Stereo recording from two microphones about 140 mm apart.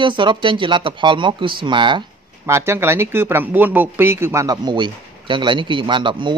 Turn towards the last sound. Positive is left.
turn(degrees=-35)  # may be behind; listen again after turning